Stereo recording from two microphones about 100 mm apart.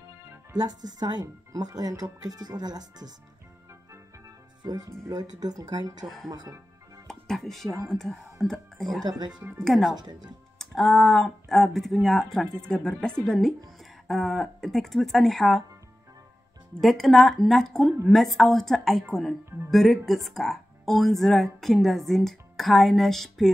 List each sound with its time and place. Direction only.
0.5 s speech: 40° right (ahead or behind)
4.6 s speech: 40° right (ahead or behind)
6.0 s a woman's voice: centre (ahead or behind)
16.8 s a woman's voice: 5° left (ahead or behind)